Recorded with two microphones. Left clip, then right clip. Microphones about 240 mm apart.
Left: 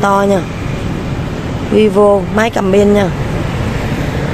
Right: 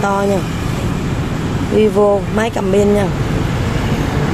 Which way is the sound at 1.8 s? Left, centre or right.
Centre.